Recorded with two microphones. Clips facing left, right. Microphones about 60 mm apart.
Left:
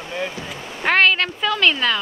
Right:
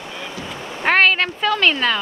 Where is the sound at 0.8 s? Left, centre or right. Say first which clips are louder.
Right 1 dB; centre.